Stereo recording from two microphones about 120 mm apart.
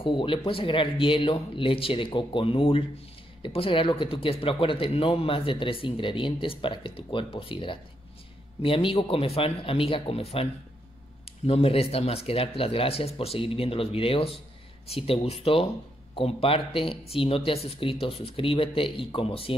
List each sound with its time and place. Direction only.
0.0 s speech: 45° left (ahead or behind)